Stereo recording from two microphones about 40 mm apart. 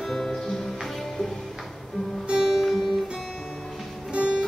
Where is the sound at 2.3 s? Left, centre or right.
Centre.